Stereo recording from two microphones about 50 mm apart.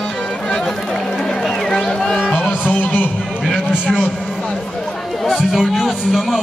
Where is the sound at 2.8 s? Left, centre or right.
Left.